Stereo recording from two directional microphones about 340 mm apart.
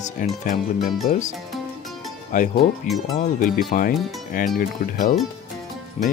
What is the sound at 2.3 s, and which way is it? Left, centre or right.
Speech, left.